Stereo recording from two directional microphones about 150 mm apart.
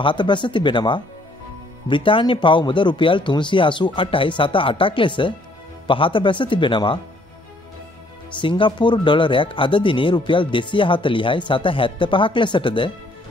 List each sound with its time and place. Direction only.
0.0 s speech: 30° left (ahead or behind)
8.4 s speech: 35° left (ahead or behind)